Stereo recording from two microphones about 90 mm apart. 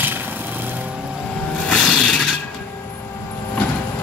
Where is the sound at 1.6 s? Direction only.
5° left (ahead or behind).